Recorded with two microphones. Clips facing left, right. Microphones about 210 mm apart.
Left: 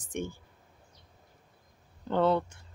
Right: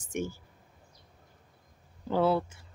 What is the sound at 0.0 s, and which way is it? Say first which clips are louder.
Speech: right 2 dB; 10° right (ahead or behind).